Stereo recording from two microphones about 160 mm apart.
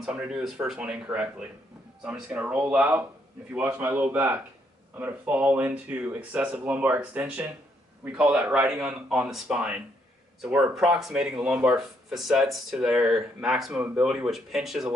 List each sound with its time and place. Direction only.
0.0 s speech: 5° right (ahead or behind)